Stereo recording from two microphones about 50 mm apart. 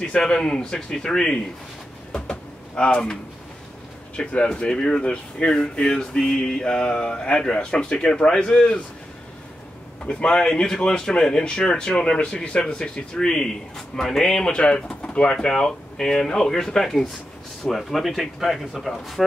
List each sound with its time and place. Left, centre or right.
0.1 s speech: centre
2.1 s a sound: centre
4.2 s speech: centre
10.0 s speech: centre
15.0 s pigeon: centre
15.3 s speech: centre